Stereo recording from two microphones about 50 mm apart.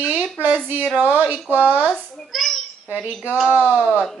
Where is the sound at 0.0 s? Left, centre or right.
Right.